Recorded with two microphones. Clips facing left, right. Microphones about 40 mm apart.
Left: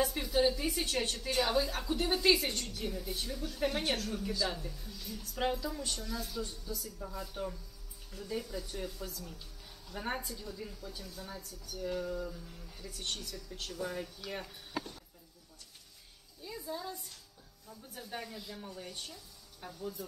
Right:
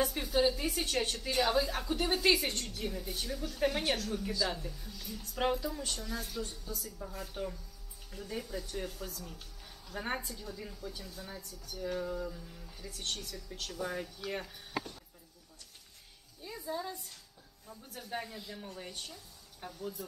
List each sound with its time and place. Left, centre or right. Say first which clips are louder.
0.0 s a woman's voice: even; centre
6.1 s a woman's voice: even; right
6.4 s a woman's voice: even; centre
16.4 s music: right 2 dB; centre
18.1 s speech: right 3 dB; centre
19.0 s music: even; centre
19.8 s speech: even; centre